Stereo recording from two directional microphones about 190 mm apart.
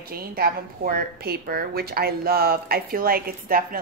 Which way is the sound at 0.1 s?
50° right (ahead or behind).